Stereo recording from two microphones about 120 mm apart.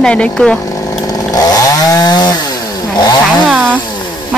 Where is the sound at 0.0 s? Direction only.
10° left (ahead or behind).